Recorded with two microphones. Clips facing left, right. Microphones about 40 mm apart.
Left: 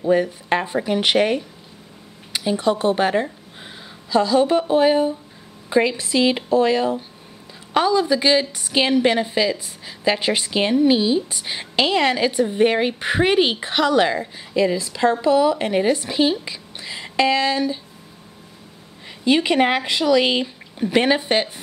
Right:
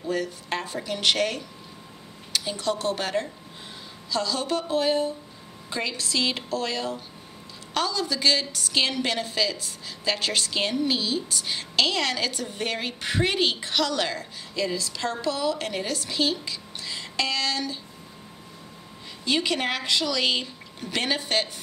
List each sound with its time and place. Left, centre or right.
0.0 s a woman's voice: left
19.2 s a woman's voice: left